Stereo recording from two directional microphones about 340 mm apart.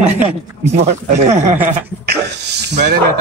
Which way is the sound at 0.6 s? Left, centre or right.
Centre.